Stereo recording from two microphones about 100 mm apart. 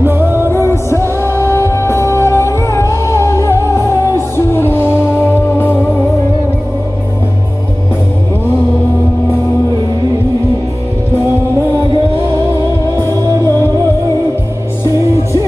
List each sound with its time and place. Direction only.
0.0 s music: 25° right (ahead or behind)
0.7 s music: 25° left (ahead or behind)
13.1 s music: 35° right (ahead or behind)